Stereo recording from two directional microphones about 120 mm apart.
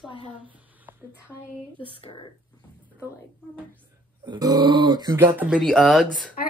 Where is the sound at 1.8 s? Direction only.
45° left (ahead or behind).